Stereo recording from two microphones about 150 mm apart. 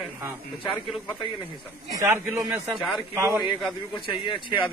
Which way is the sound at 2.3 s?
5° right (ahead or behind).